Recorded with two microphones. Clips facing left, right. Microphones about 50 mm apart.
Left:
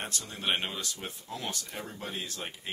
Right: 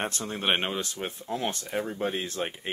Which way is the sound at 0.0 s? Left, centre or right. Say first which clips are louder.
Right 6 dB; right.